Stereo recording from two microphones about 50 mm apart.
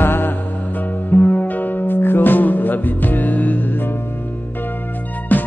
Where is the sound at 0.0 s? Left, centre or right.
Left.